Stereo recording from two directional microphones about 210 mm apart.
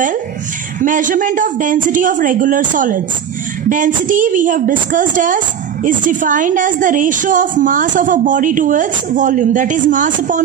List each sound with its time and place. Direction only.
0.7 s a woman's voice: 40° right (ahead or behind)